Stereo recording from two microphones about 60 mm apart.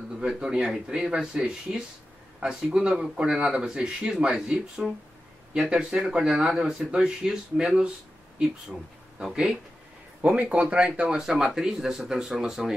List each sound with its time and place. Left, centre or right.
0.2 s speech: centre
9.2 s speech: centre
10.2 s speech: right